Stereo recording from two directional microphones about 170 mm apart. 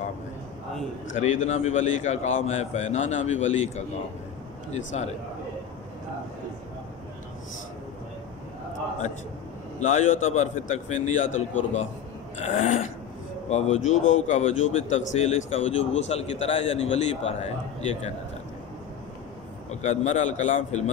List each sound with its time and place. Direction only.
1.1 s a man's voice: 45° left (ahead or behind)
9.8 s a man's voice: 45° left (ahead or behind)
12.4 s a man's voice: 45° left (ahead or behind)
19.7 s a man's voice: 45° left (ahead or behind)